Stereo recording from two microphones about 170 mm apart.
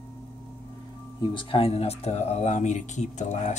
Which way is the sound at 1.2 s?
30° left (ahead or behind).